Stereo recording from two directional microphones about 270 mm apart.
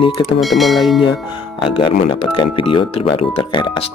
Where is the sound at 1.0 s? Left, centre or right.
Centre.